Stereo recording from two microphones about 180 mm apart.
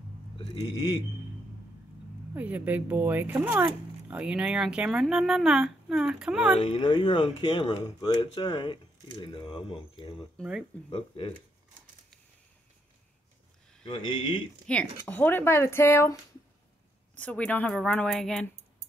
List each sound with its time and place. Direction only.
2.3 s speech: 10° right (ahead or behind)
6.6 s speech: 30° left (ahead or behind)
10.3 s speech: 5° right (ahead or behind)
10.9 s speech: 30° left (ahead or behind)
13.8 s speech: 30° left (ahead or behind)
14.7 s speech: 5° left (ahead or behind)